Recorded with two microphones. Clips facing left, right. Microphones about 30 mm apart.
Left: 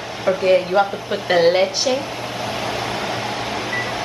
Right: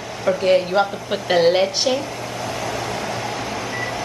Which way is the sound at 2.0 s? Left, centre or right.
Left.